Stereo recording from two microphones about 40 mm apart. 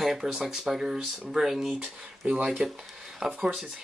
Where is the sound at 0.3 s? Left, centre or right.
Centre.